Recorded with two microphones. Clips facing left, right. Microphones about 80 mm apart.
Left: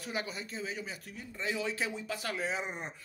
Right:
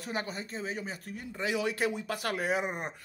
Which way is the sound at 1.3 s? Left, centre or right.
Right.